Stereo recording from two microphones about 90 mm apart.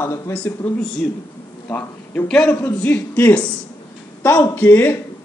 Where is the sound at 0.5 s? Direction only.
30° left (ahead or behind).